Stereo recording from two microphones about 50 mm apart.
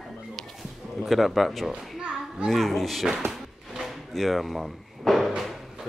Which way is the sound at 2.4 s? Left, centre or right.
Centre.